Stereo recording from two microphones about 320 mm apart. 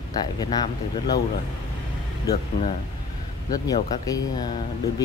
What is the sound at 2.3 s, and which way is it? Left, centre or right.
Speech, centre.